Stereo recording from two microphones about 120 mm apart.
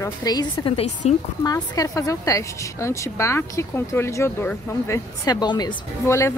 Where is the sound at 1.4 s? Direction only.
30° left (ahead or behind).